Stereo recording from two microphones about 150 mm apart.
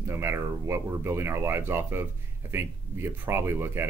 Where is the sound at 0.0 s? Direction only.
15° right (ahead or behind).